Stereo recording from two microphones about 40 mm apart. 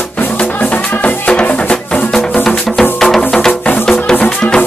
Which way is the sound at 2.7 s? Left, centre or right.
Centre.